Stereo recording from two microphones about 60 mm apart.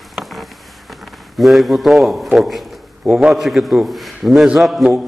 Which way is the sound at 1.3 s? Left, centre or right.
Centre.